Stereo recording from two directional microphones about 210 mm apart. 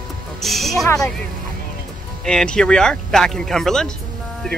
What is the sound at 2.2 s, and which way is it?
Speech, 5° left (ahead or behind).